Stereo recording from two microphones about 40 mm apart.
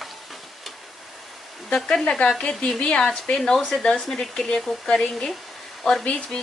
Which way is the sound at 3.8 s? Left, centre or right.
Centre.